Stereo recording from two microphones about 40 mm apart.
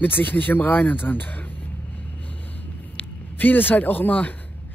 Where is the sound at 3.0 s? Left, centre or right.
Left.